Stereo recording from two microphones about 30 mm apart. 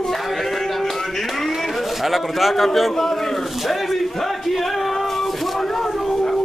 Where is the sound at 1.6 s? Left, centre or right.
Centre.